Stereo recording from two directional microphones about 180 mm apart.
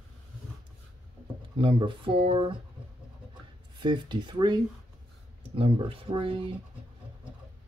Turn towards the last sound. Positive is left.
turn(degrees=-30)  # may be behind; listen again after turning